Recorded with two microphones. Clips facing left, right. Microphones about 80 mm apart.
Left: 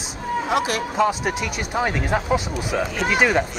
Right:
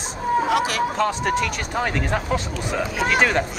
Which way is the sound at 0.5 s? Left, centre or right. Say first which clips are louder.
Right 1 dB; left.